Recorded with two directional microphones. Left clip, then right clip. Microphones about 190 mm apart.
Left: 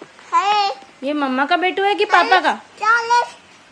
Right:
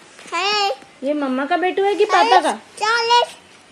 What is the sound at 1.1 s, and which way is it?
Speech, 50° left (ahead or behind).